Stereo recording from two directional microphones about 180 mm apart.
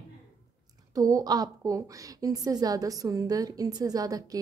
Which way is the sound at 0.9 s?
20° right (ahead or behind).